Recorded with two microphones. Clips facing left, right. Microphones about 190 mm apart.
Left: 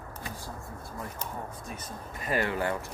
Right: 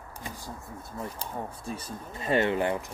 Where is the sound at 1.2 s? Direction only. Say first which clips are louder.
Right 2 dB; 30° right (ahead or behind).